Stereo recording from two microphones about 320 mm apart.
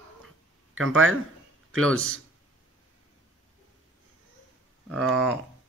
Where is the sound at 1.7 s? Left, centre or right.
Right.